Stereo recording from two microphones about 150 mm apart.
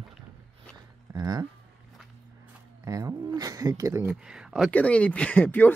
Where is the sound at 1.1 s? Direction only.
25° right (ahead or behind).